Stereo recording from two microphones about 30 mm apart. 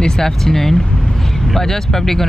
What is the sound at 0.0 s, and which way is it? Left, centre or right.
Speech, centre.